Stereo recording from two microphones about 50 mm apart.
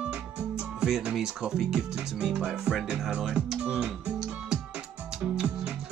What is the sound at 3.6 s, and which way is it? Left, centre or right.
Speech, right.